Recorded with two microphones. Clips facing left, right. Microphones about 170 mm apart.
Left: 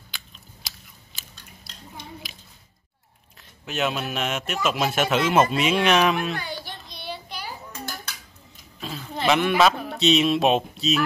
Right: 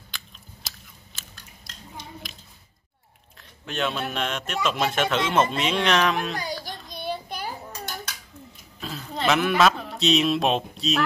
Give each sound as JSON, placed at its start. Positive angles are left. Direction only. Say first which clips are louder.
{"t": 0.1, "sound": "biting", "louder": "right 1 dB", "side_deg": 0}
{"t": 2.2, "sound": "a sound", "louder": "right 1 dB", "side_deg": 0}
{"t": 3.3, "sound": "a man's voice", "louder": "left 2 dB", "side_deg": 5}
{"t": 6.3, "sound": "a sound", "louder": "right 1 dB", "side_deg": -40}
{"t": 6.9, "sound": "child singing", "louder": "right 8 dB", "side_deg": -45}
{"t": 8.8, "sound": "speech", "louder": "left 1 dB", "side_deg": 0}